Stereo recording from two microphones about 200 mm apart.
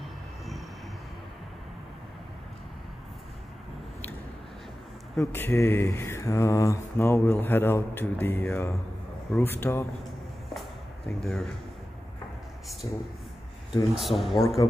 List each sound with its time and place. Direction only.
5.2 s speech: 10° left (ahead or behind)
10.5 s a sound: centre (ahead or behind)
12.8 s speech: 20° left (ahead or behind)
13.9 s speech: centre (ahead or behind)